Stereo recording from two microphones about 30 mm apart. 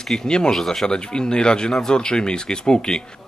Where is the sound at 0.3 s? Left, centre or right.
Left.